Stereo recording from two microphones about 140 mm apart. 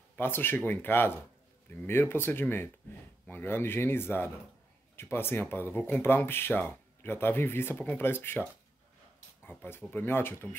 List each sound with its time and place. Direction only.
0.1 s speech: 15° left (ahead or behind)
9.5 s speech: 15° left (ahead or behind)